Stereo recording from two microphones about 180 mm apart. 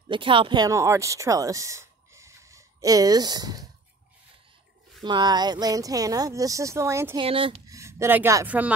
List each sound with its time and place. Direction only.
0.1 s speech: 30° right (ahead or behind)
5.0 s speech: 25° right (ahead or behind)
7.2 s speech: 30° right (ahead or behind)
7.6 s speech: 15° right (ahead or behind)